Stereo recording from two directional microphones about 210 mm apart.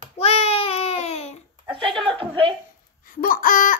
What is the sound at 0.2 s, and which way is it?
Babbling, 30° left (ahead or behind).